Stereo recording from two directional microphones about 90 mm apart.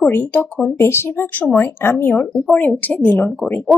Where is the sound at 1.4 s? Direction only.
20° left (ahead or behind).